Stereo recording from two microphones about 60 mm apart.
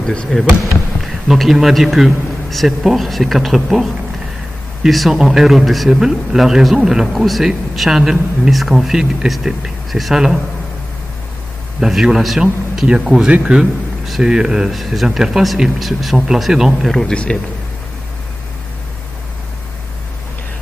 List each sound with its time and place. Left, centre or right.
0.0 s speech: centre
1.0 s a man's voice: centre
11.8 s a man's voice: centre
17.1 s a man's voice: centre